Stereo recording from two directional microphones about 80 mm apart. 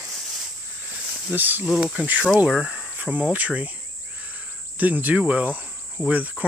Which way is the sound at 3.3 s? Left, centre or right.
Centre.